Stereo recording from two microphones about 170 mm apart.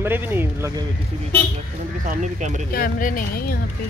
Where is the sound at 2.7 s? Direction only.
55° left (ahead or behind).